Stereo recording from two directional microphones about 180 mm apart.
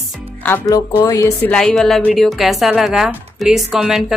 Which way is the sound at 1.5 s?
5° left (ahead or behind).